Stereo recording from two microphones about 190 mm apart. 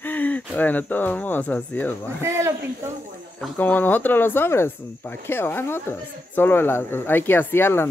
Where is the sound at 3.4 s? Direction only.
10° left (ahead or behind).